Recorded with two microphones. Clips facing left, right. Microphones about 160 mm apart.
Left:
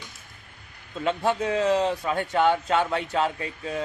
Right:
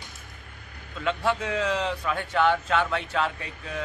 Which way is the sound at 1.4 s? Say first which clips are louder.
Left 5 dB; 35° left (ahead or behind).